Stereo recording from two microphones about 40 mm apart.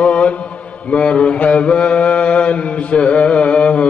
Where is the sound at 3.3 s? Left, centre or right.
Left.